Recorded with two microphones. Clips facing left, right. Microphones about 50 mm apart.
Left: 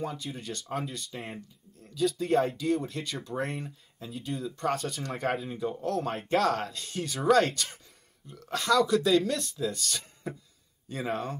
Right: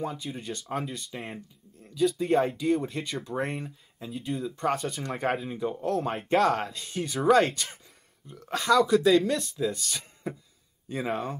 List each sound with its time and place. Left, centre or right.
0.0 s speech: centre